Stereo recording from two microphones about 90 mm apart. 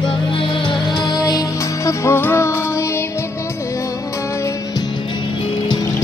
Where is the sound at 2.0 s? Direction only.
25° left (ahead or behind).